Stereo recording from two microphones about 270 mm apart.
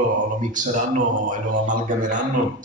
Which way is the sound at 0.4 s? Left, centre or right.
Right.